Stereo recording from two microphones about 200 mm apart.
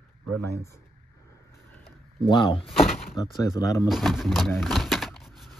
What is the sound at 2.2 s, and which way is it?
Speech, 25° left (ahead or behind).